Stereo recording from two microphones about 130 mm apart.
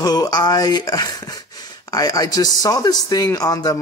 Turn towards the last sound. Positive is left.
turn(degrees=30)  # may be behind; listen again after turning